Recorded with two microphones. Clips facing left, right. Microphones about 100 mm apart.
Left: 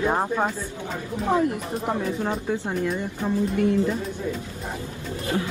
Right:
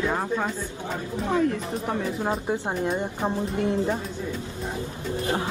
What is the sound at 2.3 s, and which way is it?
Speech, 25° right (ahead or behind).